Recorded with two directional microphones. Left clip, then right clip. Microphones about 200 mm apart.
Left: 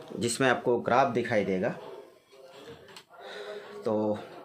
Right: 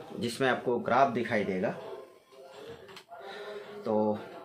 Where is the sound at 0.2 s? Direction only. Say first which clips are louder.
Left 3 dB; 60° left (ahead or behind).